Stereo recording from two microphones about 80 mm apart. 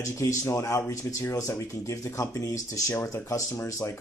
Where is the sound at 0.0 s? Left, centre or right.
Left.